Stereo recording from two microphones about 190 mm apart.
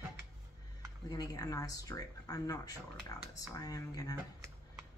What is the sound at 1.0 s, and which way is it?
Speech, 20° left (ahead or behind).